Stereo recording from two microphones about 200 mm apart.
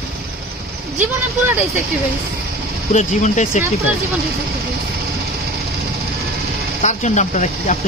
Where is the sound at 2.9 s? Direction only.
35° left (ahead or behind).